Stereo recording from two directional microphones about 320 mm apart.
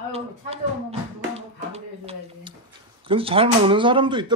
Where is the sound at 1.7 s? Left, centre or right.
Centre.